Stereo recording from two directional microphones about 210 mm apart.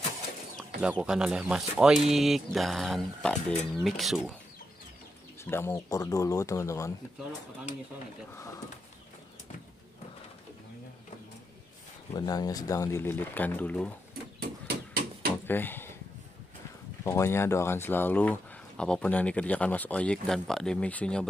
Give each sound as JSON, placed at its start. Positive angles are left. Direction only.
{"t": 0.7, "sound": "speech", "side_deg": -5}
{"t": 5.4, "sound": "speech", "side_deg": 10}
{"t": 12.1, "sound": "speech", "side_deg": 15}
{"t": 15.4, "sound": "speech", "side_deg": 10}
{"t": 17.0, "sound": "speech", "side_deg": 15}